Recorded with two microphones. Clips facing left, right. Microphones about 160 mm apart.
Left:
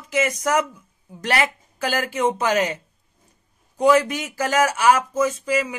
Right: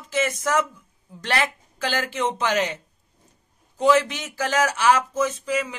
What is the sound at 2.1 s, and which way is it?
Speech, 10° left (ahead or behind).